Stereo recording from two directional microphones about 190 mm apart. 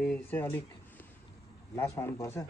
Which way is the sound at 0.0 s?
5° left (ahead or behind).